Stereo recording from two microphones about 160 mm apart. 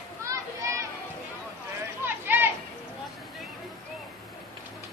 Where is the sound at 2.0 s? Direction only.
15° right (ahead or behind).